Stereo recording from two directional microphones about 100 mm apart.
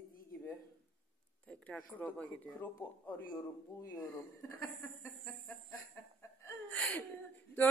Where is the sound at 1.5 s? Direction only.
10° left (ahead or behind).